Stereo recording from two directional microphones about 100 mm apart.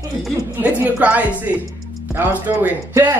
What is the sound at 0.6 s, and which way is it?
Speech, 15° right (ahead or behind).